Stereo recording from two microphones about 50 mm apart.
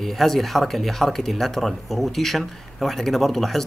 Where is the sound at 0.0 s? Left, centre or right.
Centre.